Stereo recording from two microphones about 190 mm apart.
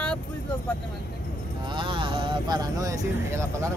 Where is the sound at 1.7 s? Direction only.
25° right (ahead or behind).